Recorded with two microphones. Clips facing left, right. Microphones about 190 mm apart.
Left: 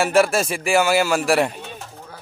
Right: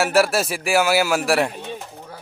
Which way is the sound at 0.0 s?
5° right (ahead or behind).